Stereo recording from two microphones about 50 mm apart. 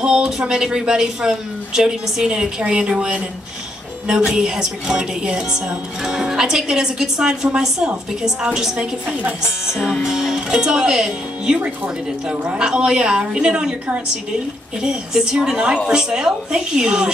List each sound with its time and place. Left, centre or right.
0.0 s a woman's voice: centre
9.4 s a woman's voice: centre
11.5 s a woman's voice: right
14.8 s a woman's voice: centre